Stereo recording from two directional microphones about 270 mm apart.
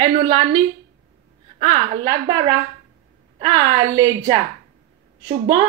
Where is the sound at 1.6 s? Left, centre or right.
Centre.